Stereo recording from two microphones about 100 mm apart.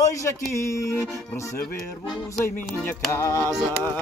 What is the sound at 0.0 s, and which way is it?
Speech, 30° left (ahead or behind).